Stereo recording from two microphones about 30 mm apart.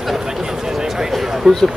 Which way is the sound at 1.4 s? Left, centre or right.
Centre.